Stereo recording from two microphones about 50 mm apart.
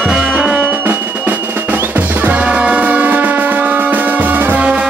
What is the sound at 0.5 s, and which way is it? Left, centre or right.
Music, right.